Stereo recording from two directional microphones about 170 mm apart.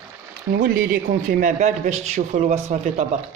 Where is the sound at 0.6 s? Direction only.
60° right (ahead or behind); by 2.9 s 40° right (ahead or behind).